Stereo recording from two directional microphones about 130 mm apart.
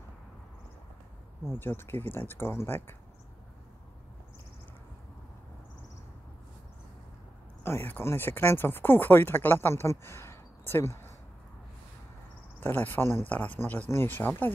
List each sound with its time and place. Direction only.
1.6 s speech: 15° left (ahead or behind)
7.6 s speech: 15° left (ahead or behind)
12.5 s speech: 15° left (ahead or behind)